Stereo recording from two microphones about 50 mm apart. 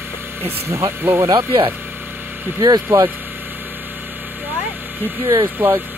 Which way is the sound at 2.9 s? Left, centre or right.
Right.